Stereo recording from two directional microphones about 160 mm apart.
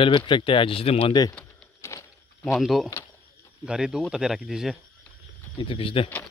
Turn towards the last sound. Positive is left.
turn(degrees=35)  # may be behind; listen again after turning